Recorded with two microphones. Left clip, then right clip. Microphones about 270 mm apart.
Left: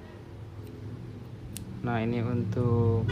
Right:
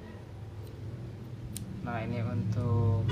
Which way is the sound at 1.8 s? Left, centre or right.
Left.